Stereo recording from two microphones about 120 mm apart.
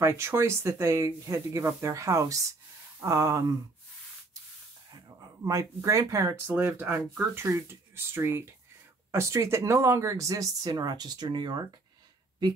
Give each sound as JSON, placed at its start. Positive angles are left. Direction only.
{"t": 0.0, "sound": "speech", "side_deg": -20}
{"t": 4.9, "sound": "speech", "side_deg": -25}